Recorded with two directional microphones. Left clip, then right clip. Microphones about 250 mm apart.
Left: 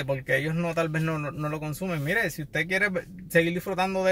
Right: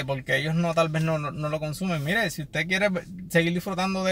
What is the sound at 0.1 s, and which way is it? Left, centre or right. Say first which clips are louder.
Speech: even; centre.